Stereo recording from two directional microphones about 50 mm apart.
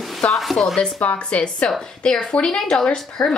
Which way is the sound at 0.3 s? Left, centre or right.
Centre.